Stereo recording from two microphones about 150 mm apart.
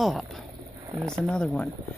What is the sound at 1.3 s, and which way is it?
Speech, 5° left (ahead or behind).